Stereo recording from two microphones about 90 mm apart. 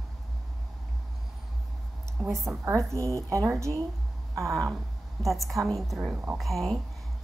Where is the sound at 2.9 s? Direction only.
35° right (ahead or behind).